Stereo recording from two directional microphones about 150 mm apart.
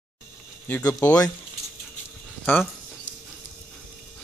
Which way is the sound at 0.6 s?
15° left (ahead or behind).